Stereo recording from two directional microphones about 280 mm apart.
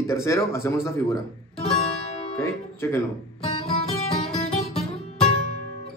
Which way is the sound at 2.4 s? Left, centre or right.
Centre.